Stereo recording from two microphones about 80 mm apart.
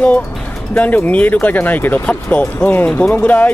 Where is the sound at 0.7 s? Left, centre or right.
Left.